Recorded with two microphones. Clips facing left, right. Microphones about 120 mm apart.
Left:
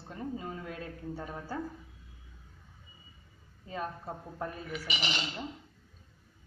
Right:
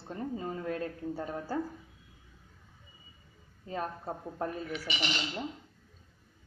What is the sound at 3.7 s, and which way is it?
Speech, 30° right (ahead or behind).